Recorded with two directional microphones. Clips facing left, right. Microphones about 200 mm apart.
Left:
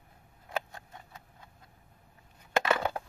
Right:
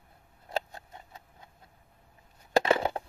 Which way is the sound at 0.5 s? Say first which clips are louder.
Right 2 dB; 30° right (ahead or behind).